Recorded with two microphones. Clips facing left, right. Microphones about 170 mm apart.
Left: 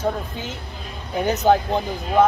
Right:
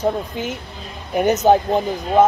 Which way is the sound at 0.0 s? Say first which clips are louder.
Right 4 dB; 20° right (ahead or behind).